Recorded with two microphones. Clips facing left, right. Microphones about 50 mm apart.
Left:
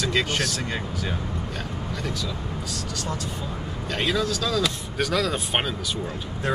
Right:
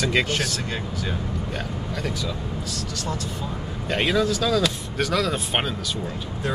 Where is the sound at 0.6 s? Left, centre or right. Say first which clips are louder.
Even; centre.